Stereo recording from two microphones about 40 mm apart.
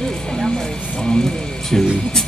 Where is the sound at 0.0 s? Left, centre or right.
Centre.